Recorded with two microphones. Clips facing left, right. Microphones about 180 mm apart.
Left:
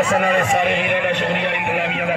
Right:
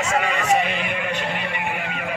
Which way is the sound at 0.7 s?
75° left (ahead or behind).